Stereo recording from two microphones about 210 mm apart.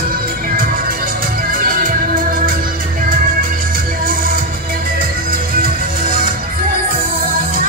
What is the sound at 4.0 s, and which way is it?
Music, 40° right (ahead or behind).